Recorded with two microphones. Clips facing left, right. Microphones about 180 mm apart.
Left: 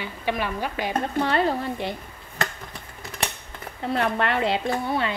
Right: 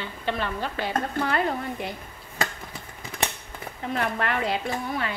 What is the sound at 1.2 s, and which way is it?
Speech, 30° left (ahead or behind).